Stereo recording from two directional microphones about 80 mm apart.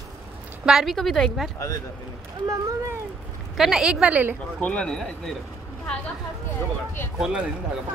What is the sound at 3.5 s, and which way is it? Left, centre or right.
Speech, centre.